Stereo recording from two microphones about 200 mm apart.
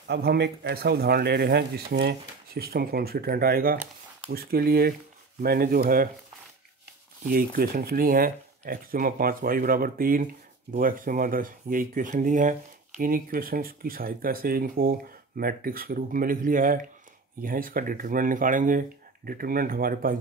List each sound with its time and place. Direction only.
0.1 s speech: 55° right (ahead or behind)
7.2 s speech: 45° right (ahead or behind)